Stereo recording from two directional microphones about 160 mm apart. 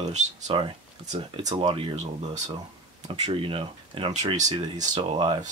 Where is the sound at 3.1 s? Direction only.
35° right (ahead or behind).